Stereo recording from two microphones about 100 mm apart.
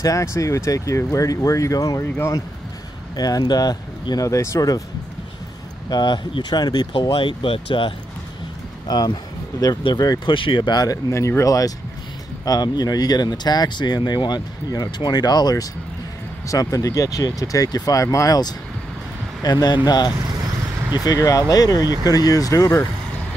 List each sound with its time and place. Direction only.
0.0 s speech: 30° left (ahead or behind)
3.2 s speech: 40° left (ahead or behind)
5.9 s speech: 45° left (ahead or behind); by 7.9 s 60° left (ahead or behind)
8.8 s speech: 40° left (ahead or behind)
10.3 s speech: 55° left (ahead or behind)
11.1 s speech: 30° left (ahead or behind)